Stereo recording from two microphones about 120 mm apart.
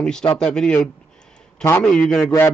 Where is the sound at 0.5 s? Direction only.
5° left (ahead or behind).